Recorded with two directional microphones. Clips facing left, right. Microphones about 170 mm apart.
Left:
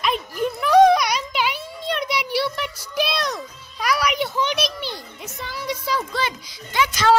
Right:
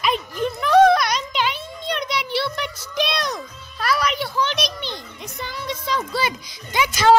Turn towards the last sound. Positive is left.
turn(degrees=-15)  # may be behind; listen again after turning